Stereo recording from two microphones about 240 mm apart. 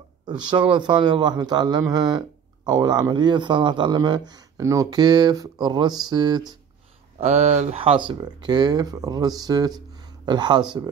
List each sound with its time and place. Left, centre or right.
0.3 s a man's voice: centre